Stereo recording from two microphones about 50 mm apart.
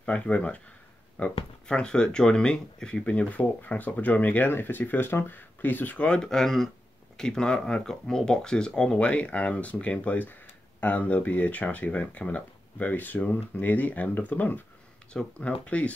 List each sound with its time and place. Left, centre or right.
0.0 s speech: left
4.5 s speech: left
5.9 s speech: centre